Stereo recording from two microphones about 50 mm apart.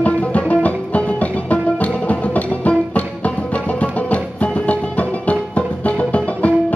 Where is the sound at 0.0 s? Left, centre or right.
Left.